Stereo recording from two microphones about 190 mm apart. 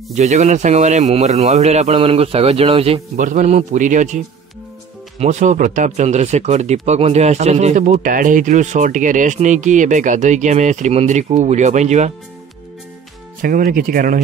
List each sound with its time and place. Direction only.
0.1 s speech: 40° right (ahead or behind)
5.2 s speech: 40° right (ahead or behind)
13.4 s speech: 45° right (ahead or behind)